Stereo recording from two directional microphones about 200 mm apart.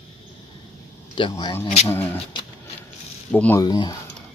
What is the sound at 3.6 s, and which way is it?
Speech, 20° left (ahead or behind).